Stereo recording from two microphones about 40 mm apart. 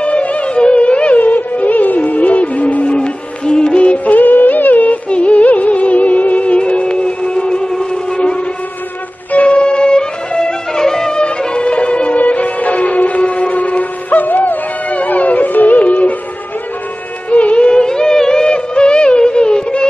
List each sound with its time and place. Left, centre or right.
0.0 s music: left
1.2 s music: left
5.1 s music: left
12.2 s music: left
17.3 s music: left